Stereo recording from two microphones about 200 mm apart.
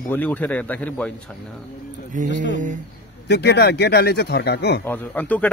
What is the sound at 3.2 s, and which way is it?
Speech, 55° left (ahead or behind).